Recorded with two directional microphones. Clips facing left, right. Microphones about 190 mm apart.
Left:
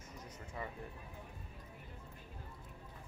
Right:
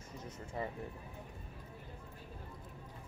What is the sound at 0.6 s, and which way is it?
Music, 30° right (ahead or behind).